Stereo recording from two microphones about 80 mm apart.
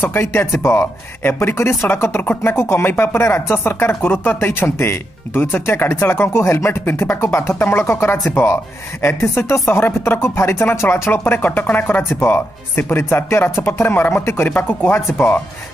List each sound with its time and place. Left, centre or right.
0.0 s speech: left